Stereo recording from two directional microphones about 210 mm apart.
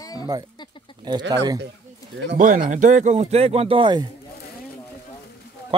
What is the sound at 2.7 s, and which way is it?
Speech, 35° right (ahead or behind).